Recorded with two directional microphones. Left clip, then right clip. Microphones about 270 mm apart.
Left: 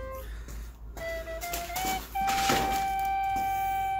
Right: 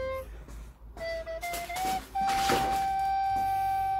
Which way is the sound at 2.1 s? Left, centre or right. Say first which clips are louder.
Even; centre.